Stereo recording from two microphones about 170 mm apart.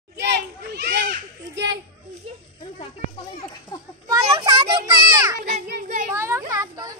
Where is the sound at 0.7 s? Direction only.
85° right.